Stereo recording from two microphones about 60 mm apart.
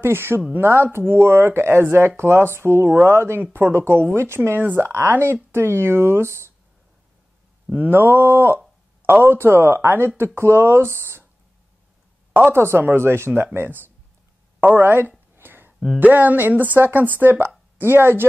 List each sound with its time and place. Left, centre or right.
0.0 s speech: right
5.1 s speech: right
7.7 s speech: right
12.4 s speech: right
14.6 s a sound: right
16.0 s speech: right